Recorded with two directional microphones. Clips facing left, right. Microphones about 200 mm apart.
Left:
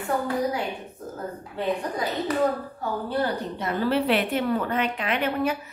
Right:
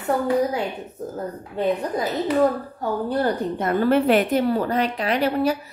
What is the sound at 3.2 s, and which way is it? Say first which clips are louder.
A woman's voice: right 3 dB; 50° right (ahead or behind).